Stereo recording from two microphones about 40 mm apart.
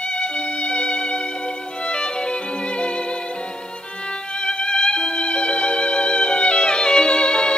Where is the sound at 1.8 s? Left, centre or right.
Left.